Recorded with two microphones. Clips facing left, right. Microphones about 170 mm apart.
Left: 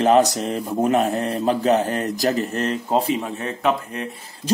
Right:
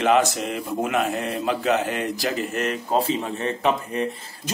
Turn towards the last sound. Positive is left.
turn(degrees=0)  # may be behind; listen again after turning